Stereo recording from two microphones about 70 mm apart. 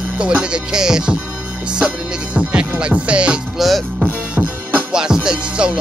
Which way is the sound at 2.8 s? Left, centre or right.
Centre.